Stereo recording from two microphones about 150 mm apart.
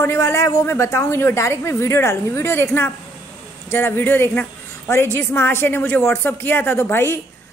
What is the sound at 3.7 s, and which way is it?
A woman's voice, 15° left (ahead or behind).